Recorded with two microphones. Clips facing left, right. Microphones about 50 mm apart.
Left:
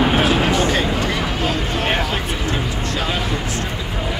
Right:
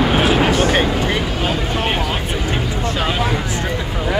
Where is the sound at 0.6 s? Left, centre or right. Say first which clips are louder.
Right 3 dB; right.